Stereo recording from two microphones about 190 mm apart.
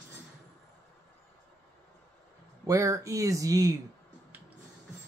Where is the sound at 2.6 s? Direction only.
15° right (ahead or behind).